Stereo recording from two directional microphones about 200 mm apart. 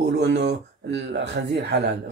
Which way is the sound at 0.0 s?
60° right (ahead or behind).